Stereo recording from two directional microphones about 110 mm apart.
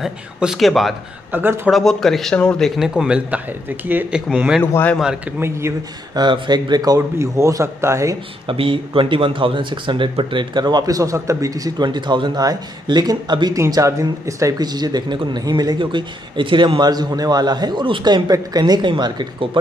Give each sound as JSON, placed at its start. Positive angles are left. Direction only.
{"t": 0.0, "sound": "a man's voice", "side_deg": -5}
{"t": 1.3, "sound": "speech", "side_deg": -20}
{"t": 1.7, "sound": "a man's voice", "side_deg": 0}
{"t": 4.4, "sound": "a man's voice", "side_deg": -5}
{"t": 5.4, "sound": "speech", "side_deg": -25}
{"t": 6.1, "sound": "speech", "side_deg": -45}
{"t": 8.5, "sound": "speech", "side_deg": -55}